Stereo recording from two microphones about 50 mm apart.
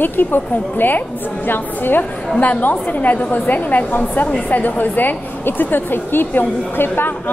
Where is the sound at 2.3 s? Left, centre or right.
Left.